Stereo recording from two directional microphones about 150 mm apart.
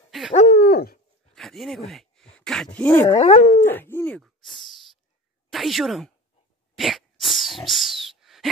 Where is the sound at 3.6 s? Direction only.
15° left (ahead or behind).